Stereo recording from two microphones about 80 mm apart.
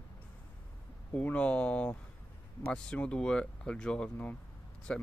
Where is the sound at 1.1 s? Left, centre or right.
Centre.